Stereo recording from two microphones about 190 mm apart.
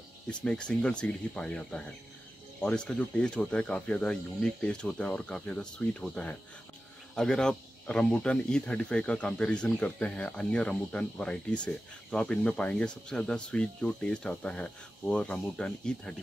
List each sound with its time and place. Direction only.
0.4 s speech: 5° left (ahead or behind)